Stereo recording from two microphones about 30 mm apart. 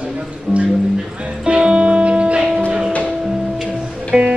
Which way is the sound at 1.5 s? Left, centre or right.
Right.